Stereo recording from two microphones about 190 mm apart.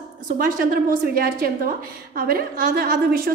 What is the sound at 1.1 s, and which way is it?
A woman's voice, 50° right (ahead or behind).